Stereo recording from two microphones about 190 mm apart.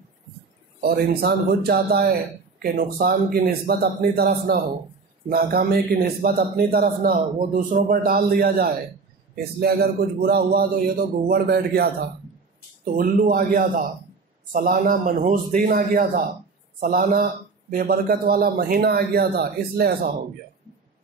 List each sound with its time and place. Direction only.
0.7 s a man's voice: 55° right (ahead or behind)